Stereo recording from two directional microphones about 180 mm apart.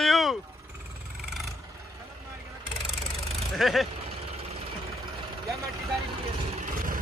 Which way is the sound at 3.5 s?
Centre (ahead or behind).